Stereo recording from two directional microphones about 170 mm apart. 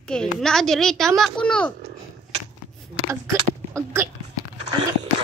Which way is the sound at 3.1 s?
15° right (ahead or behind).